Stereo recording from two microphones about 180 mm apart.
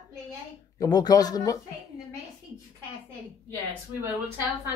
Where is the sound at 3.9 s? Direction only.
15° right (ahead or behind).